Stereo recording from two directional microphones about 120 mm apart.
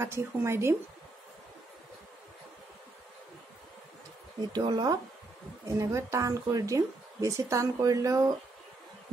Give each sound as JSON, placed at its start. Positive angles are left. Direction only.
{"t": 0.0, "sound": "speech", "side_deg": -20}
{"t": 4.5, "sound": "speech", "side_deg": -35}